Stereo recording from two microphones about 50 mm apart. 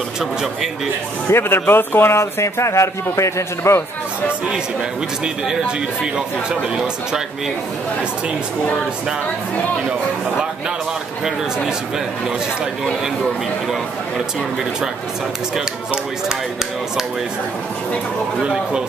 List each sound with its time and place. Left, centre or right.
0.2 s speech: centre
1.3 s speech: left
2.1 s a man's voice: left
6.1 s speech: centre
15.5 s speech: centre
18.4 s speech: centre